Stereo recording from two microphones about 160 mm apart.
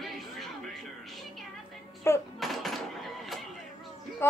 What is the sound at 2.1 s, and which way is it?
Speech, 15° left (ahead or behind).